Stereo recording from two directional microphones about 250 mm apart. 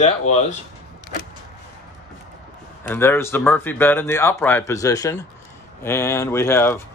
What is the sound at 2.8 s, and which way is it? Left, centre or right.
Speech, centre.